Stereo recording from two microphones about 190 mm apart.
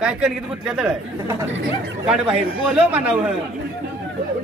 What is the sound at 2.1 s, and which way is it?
A man's voice, 5° right (ahead or behind).